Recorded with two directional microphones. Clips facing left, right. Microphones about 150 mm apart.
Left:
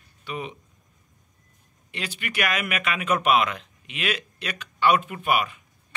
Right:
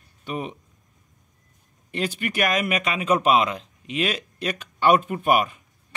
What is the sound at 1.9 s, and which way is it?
Speech, 45° right (ahead or behind).